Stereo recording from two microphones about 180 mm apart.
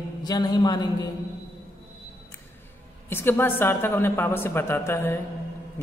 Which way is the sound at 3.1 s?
10° left (ahead or behind).